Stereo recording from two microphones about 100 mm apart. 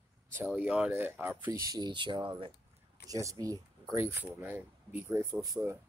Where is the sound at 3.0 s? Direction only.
35° right (ahead or behind).